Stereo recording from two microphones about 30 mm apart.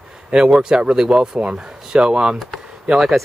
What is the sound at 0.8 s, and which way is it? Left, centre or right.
Speech, right.